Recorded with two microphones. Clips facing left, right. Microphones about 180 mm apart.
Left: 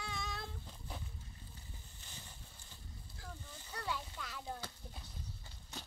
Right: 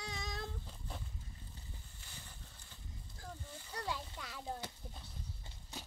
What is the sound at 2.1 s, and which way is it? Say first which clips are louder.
Horse: even; 20° left (ahead or behind).